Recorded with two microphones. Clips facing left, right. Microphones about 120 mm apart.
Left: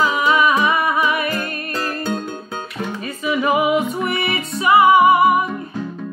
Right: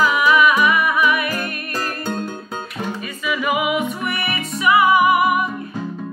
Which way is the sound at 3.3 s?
30° left (ahead or behind).